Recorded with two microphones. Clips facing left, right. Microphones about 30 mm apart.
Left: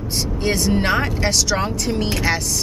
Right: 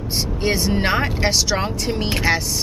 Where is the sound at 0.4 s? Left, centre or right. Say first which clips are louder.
Left 1 dB; centre.